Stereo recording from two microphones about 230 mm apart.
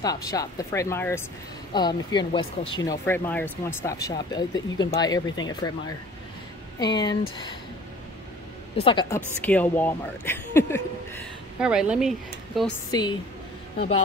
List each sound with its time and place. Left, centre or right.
0.0 s speech: centre
8.7 s speech: left
9.4 s speech: centre
11.6 s a woman's voice: centre
12.9 s speech: centre